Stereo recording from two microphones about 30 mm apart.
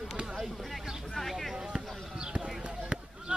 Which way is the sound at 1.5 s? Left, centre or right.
Right.